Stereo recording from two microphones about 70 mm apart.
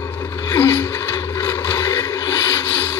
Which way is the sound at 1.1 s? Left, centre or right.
Left.